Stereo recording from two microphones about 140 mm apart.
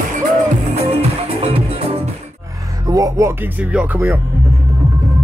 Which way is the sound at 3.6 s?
10° right (ahead or behind).